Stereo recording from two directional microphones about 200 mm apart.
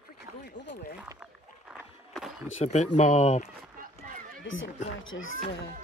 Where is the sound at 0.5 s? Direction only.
55° left (ahead or behind).